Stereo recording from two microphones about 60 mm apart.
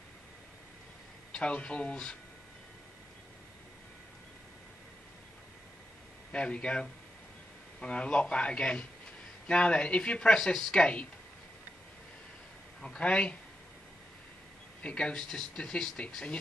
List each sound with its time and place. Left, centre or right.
1.3 s speech: centre
6.3 s speech: centre
12.8 s speech: centre
14.8 s speech: centre